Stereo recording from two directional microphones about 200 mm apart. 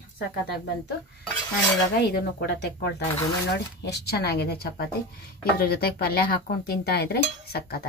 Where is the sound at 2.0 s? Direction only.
60° left (ahead or behind).